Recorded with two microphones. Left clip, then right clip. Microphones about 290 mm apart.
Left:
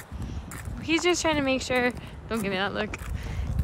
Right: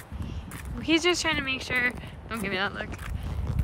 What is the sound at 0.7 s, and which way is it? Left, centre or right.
Speech, centre.